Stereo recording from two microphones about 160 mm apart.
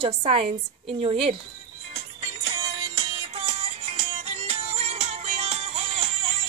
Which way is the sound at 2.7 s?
35° right (ahead or behind).